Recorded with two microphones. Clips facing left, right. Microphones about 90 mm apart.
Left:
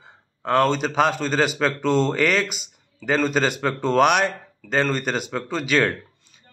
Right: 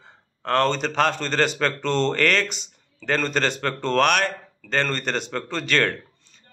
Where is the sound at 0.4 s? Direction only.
10° left (ahead or behind).